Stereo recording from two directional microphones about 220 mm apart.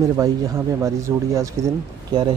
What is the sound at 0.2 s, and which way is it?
Speech, 15° right (ahead or behind).